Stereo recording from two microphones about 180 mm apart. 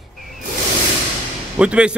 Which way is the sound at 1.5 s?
5° right (ahead or behind).